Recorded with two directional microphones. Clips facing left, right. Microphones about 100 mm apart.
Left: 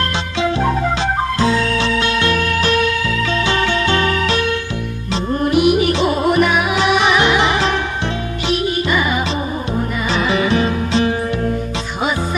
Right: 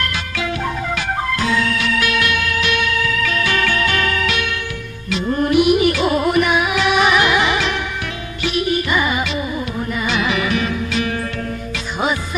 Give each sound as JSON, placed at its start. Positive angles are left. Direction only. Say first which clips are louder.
{"t": 0.0, "sound": "music", "louder": "left 5 dB", "side_deg": 25}
{"t": 6.7, "sound": "music", "louder": "left 1 dB", "side_deg": 30}
{"t": 10.0, "sound": "music", "louder": "left 3 dB", "side_deg": 35}